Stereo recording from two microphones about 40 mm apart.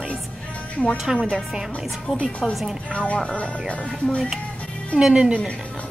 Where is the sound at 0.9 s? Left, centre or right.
Centre.